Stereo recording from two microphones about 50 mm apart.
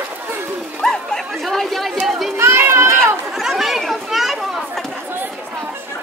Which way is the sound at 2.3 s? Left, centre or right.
Right.